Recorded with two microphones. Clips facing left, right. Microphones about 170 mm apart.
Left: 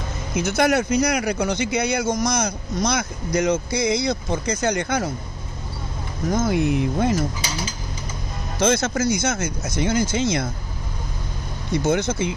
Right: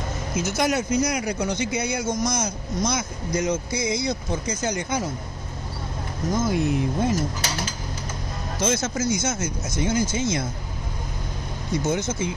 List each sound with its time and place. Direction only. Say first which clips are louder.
0.3 s speech: left 4 dB; 60° left (ahead or behind)
6.3 s speech: left 2 dB; 60° left (ahead or behind)
8.5 s speech: left 5 dB; 65° left (ahead or behind)
11.7 s speech: left 4 dB; 65° left (ahead or behind)